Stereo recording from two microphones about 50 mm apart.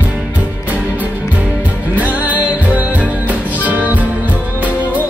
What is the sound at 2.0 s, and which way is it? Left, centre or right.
Music, right.